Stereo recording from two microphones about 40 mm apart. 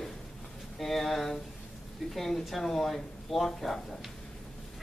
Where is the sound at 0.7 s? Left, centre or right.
Centre.